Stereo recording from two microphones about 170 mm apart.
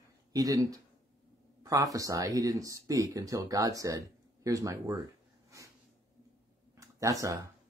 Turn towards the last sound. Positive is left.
turn(degrees=-20)  # may be behind; listen again after turning